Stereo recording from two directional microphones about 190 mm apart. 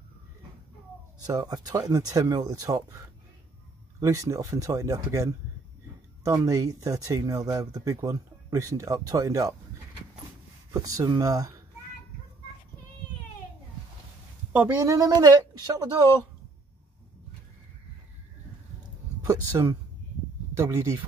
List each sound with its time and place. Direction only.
1.2 s speech: 20° right (ahead or behind)
4.0 s speech: 15° right (ahead or behind)
10.7 s speech: 20° right (ahead or behind)
14.5 s speech: 15° right (ahead or behind)
19.2 s speech: 15° right (ahead or behind)